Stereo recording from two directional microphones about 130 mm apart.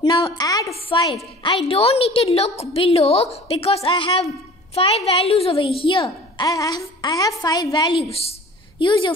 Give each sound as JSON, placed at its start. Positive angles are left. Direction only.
{"t": 0.0, "sound": "a woman's voice", "side_deg": 35}
{"t": 1.7, "sound": "a woman's voice", "side_deg": 50}
{"t": 8.1, "sound": "a woman's voice", "side_deg": 50}